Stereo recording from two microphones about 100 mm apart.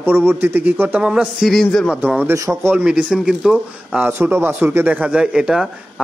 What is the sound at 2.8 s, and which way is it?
Speech, 10° right (ahead or behind).